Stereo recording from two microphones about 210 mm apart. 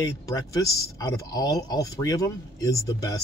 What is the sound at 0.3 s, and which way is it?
Speech, 15° left (ahead or behind).